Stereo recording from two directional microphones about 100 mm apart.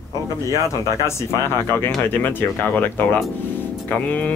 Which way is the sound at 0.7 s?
30° left (ahead or behind).